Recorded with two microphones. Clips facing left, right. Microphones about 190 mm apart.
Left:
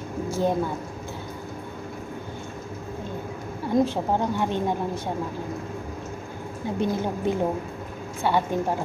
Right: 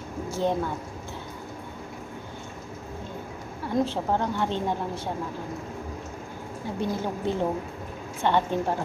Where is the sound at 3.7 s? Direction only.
15° left (ahead or behind).